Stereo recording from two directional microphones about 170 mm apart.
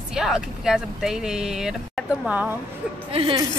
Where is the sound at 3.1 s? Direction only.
30° right (ahead or behind).